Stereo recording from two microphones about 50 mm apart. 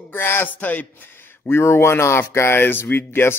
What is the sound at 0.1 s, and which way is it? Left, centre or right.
Speech, left.